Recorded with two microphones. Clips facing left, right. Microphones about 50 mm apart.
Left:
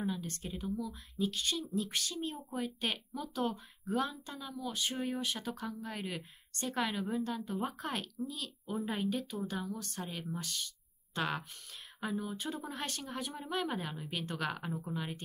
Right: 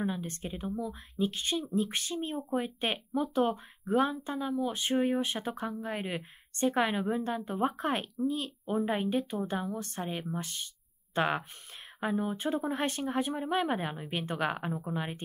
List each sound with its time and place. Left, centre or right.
0.0 s speech: right